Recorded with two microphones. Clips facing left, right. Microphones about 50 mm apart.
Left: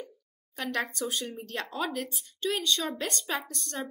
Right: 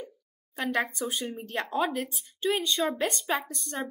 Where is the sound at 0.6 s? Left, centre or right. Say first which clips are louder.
Right 3 dB; centre.